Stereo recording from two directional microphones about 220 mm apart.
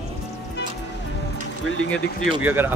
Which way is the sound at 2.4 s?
10° right (ahead or behind).